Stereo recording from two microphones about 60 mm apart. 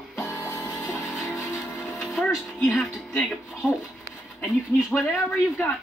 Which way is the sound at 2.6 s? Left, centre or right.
Centre.